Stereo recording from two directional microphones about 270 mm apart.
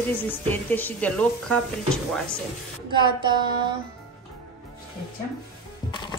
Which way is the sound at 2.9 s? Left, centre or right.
Centre.